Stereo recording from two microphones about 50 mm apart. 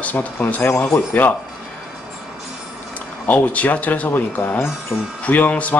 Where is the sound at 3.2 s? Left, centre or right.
Left.